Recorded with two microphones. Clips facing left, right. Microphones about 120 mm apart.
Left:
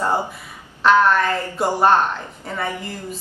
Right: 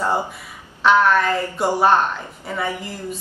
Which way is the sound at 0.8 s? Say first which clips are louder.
Even; centre (ahead or behind).